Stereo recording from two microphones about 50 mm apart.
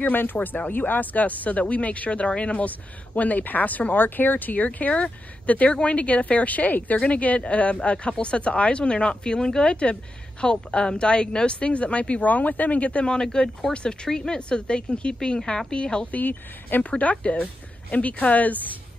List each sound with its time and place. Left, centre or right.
0.0 s speech: left
13.1 s speech: centre
16.1 s speech: left
17.0 s speech: left